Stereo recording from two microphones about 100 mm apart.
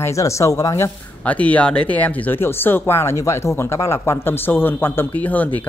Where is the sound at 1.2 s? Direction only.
15° left (ahead or behind).